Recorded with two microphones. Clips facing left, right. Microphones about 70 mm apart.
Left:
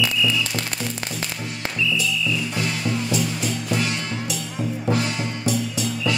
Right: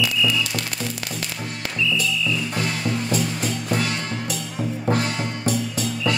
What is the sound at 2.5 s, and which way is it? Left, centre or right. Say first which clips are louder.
Music: even; right.